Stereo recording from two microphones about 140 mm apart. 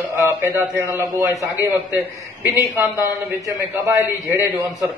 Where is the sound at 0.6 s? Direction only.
20° right (ahead or behind).